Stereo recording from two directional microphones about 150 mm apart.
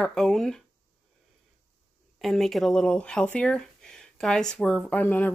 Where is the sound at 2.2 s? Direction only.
Centre (ahead or behind).